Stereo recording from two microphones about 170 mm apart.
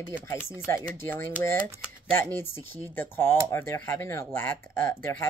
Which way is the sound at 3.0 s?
15° left (ahead or behind).